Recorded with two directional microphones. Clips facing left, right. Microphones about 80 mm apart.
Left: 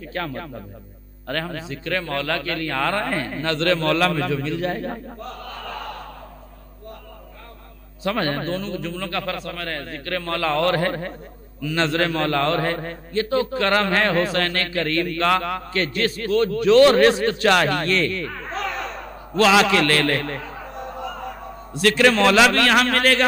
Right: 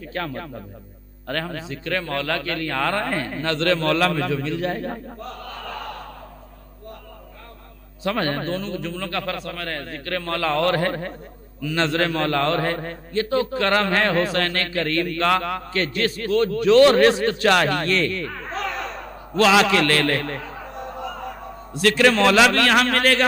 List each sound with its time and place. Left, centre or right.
0.1 s a man's voice: centre
8.0 s a man's voice: centre